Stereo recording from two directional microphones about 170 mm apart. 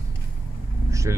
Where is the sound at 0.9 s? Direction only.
20° right (ahead or behind).